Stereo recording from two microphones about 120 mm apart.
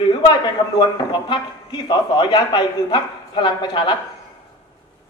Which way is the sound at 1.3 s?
40° left (ahead or behind).